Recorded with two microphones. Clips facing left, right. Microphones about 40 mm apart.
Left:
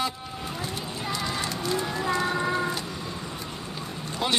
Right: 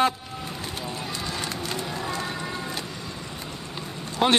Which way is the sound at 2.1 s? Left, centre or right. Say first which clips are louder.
Left 5 dB; left.